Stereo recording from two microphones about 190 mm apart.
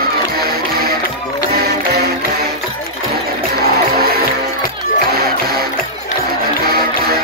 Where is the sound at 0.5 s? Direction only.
55° right (ahead or behind).